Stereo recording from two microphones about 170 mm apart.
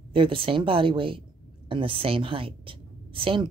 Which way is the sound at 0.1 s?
30° right (ahead or behind).